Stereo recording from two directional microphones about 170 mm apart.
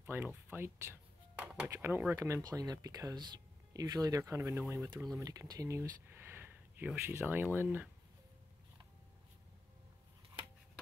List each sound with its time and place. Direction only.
0.0 s speech: 10° right (ahead or behind)